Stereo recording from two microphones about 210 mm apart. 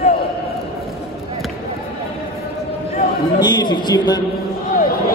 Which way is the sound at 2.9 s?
25° left (ahead or behind).